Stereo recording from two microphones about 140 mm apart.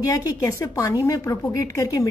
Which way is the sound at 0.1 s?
25° left (ahead or behind).